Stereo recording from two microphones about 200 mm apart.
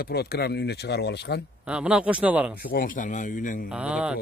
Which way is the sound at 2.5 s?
45° left (ahead or behind).